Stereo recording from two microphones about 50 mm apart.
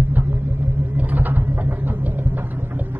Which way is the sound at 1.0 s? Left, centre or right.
Right.